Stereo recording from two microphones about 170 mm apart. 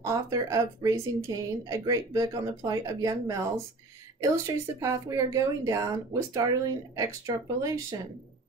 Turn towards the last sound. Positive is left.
turn(degrees=-20)  # may be behind; listen again after turning